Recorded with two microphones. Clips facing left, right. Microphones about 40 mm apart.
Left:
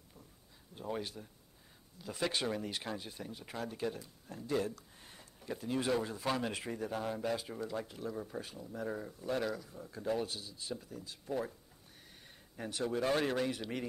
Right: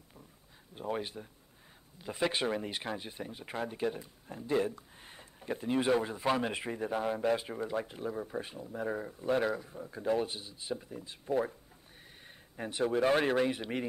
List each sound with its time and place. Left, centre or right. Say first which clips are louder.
0.7 s speech: right 4 dB; right
12.5 s speech: right 5 dB; right